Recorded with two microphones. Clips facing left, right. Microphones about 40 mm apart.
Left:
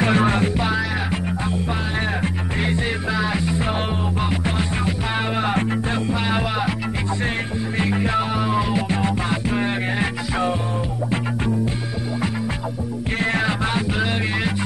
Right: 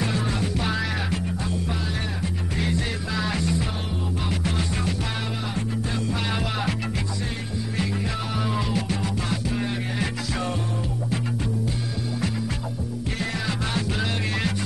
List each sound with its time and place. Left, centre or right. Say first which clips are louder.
0.0 s music: left 8 dB; left
0.6 s music: left 4 dB; centre
2.6 s music: left 5 dB; left
3.2 s music: even; centre
7.7 s music: left 7 dB; left
8.4 s music: left 5 dB; centre
8.8 s music: left 6 dB; left
13.2 s music: left 8 dB; left
13.7 s music: left 5 dB; left